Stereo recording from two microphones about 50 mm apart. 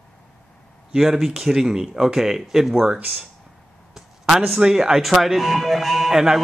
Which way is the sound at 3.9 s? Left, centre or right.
Centre.